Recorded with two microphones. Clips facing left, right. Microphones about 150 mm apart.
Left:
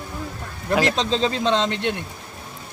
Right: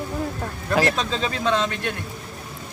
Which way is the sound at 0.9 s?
25° left (ahead or behind).